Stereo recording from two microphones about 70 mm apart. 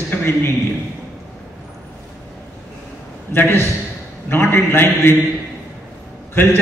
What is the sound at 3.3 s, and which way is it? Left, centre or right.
A man's voice, left.